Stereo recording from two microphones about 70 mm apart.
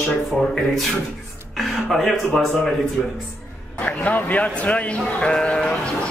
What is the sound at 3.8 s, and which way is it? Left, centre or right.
Speech, centre.